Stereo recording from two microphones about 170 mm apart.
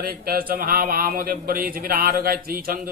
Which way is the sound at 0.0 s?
60° right (ahead or behind).